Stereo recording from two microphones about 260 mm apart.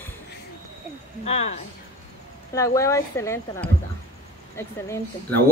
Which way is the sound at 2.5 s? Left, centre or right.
Centre.